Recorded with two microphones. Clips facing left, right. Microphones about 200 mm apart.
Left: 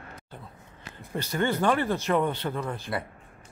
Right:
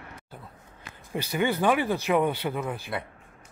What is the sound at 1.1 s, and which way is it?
Speech, 15° right (ahead or behind).